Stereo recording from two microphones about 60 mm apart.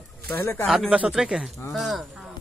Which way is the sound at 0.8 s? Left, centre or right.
Right.